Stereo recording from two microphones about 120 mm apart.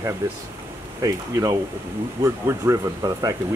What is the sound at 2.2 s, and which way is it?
Speech, 25° right (ahead or behind).